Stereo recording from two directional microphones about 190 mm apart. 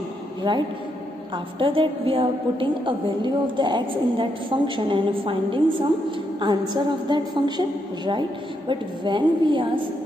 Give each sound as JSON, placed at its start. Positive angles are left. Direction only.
{"t": 0.4, "sound": "a man's voice", "side_deg": -25}